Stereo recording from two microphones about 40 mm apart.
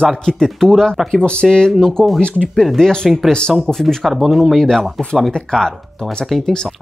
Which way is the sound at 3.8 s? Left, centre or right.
Centre.